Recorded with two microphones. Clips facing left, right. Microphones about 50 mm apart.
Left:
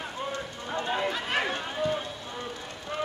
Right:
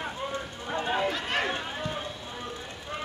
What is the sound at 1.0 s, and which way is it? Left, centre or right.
Run, centre.